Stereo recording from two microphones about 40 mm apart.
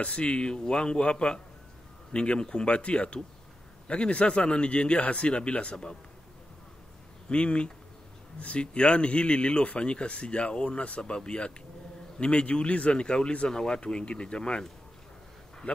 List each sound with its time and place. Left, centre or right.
0.0 s speech: left
7.2 s speech: left